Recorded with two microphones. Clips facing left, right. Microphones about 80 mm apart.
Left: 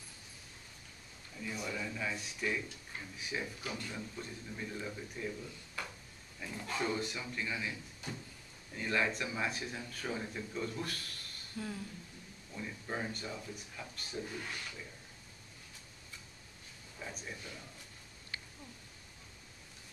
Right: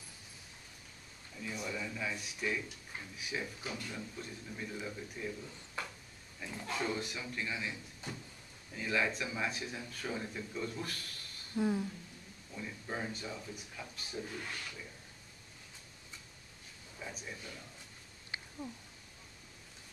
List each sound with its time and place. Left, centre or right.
1.4 s speech: centre
6.4 s speech: centre
11.5 s speech: right
12.5 s speech: centre
17.0 s speech: centre
18.3 s a sound: right